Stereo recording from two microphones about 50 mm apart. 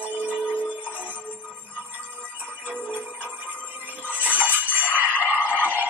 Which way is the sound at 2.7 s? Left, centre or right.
Left.